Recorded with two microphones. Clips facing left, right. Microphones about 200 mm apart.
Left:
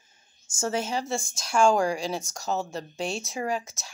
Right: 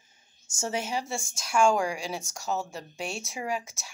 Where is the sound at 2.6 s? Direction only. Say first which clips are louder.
Left 5 dB; 10° right (ahead or behind).